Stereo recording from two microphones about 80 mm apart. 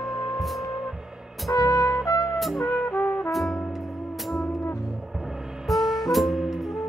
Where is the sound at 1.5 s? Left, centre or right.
Left.